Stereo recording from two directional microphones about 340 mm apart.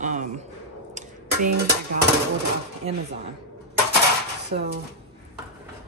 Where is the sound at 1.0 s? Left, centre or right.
Right.